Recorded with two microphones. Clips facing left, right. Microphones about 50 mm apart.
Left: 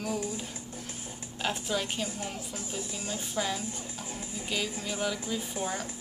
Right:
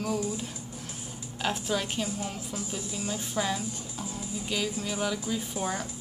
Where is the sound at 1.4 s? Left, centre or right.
Centre.